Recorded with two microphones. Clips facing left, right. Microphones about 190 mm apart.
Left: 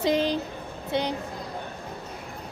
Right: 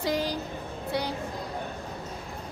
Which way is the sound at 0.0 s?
20° left (ahead or behind).